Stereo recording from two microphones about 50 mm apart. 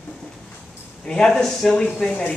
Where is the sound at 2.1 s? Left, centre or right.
Left.